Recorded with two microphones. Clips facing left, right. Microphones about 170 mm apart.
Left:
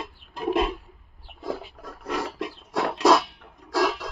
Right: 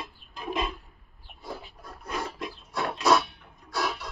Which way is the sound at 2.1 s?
85° left.